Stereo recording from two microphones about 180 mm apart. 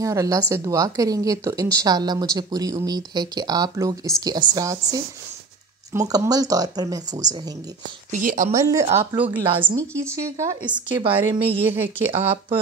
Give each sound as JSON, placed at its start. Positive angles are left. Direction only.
{"t": 0.0, "sound": "a woman's voice", "side_deg": -20}
{"t": 8.1, "sound": "a woman's voice", "side_deg": -45}
{"t": 9.1, "sound": "a woman's voice", "side_deg": -10}